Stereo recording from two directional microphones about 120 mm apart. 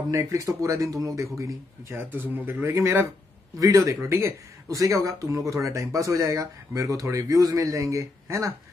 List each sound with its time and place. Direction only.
0.1 s speech: 25° right (ahead or behind)